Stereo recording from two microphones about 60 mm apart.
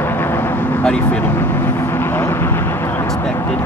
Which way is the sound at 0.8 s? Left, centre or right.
Left.